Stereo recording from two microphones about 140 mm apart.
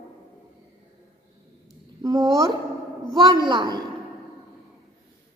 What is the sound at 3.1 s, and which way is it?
Speech, 30° right (ahead or behind).